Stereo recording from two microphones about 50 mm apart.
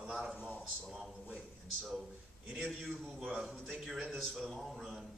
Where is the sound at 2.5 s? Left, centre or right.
Centre.